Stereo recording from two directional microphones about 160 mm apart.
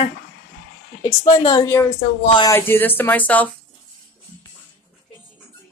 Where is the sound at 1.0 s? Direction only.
25° left (ahead or behind).